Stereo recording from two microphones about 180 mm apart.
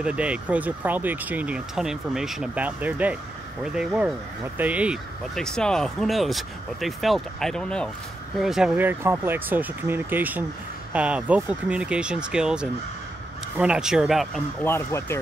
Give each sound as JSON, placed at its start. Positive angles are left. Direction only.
{"t": 0.0, "sound": "speech", "side_deg": -5}
{"t": 14.6, "sound": "speech", "side_deg": 15}